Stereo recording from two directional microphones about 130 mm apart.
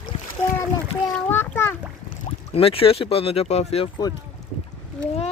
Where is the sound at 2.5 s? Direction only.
45° left (ahead or behind).